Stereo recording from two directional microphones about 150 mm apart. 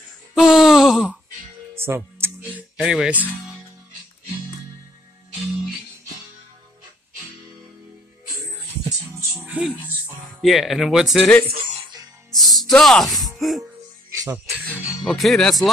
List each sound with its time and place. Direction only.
0.3 s a sound: 5° right (ahead or behind)
1.8 s music: 15° right (ahead or behind)
2.8 s speech: 5° right (ahead or behind)
9.3 s speech: 5° right (ahead or behind)
10.4 s speech: centre (ahead or behind)
11.5 s music: 30° right (ahead or behind)
12.3 s music: centre (ahead or behind)
12.7 s speech: centre (ahead or behind)
15.0 s speech: centre (ahead or behind)